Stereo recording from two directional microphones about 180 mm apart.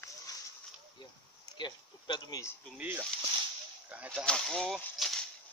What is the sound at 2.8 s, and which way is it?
Speech, 5° right (ahead or behind).